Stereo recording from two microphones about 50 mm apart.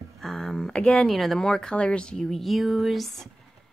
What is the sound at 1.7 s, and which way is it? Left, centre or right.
Speech, left.